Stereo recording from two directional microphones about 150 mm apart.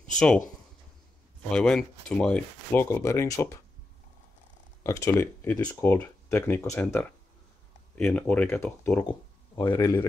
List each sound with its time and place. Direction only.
1.5 s speech: 5° left (ahead or behind)
4.8 s speech: 20° left (ahead or behind)